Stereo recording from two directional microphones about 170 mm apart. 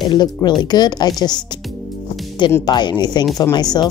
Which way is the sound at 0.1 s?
25° left (ahead or behind).